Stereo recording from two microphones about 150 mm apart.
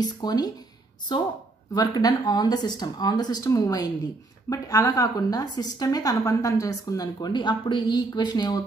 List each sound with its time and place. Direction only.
0.0 s a woman's voice: 25° left (ahead or behind)
1.7 s a woman's voice: 25° left (ahead or behind)